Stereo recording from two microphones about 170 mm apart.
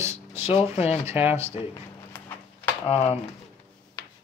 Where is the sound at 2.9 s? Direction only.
40° left (ahead or behind).